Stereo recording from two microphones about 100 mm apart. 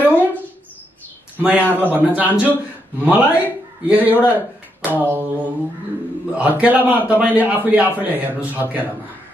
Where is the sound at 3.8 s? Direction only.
15° right (ahead or behind).